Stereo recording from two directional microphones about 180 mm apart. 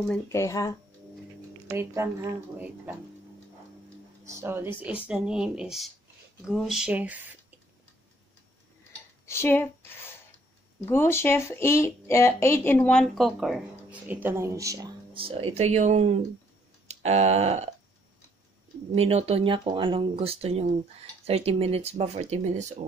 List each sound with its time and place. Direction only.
0.1 s speech: 15° left (ahead or behind)
1.7 s a woman's voice: 15° right (ahead or behind)
4.2 s a woman's voice: 15° right (ahead or behind)
9.2 s speech: 15° left (ahead or behind); by 14.9 s 20° right (ahead or behind)
15.1 s speech: 30° right (ahead or behind)
18.9 s speech: 35° right (ahead or behind)